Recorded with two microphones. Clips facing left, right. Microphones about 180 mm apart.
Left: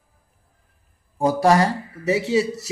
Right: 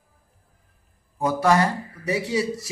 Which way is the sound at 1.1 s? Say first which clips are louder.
Left 3 dB; 30° left (ahead or behind).